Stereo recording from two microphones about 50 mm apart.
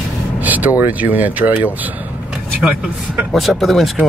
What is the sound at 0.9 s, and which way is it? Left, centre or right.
Speech, right.